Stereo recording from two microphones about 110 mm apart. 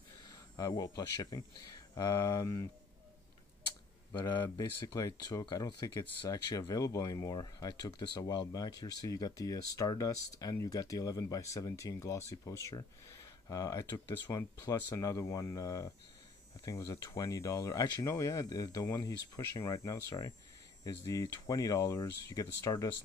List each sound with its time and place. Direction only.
0.6 s speech: 35° left (ahead or behind)
4.6 s speech: 45° left (ahead or behind)
4.9 s speech: 30° left (ahead or behind)
13.8 s speech: 20° left (ahead or behind)